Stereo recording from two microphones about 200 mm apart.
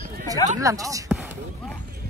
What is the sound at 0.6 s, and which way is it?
Speech, 15° right (ahead or behind).